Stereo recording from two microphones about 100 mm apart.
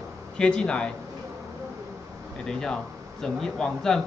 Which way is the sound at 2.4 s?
5° left (ahead or behind).